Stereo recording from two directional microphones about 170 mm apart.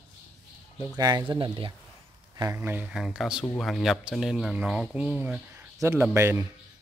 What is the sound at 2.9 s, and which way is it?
A man's voice, centre (ahead or behind).